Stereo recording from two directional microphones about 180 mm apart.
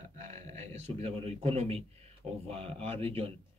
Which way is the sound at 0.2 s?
40° right (ahead or behind).